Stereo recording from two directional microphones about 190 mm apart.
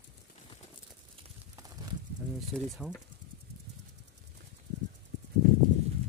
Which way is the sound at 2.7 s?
5° right (ahead or behind).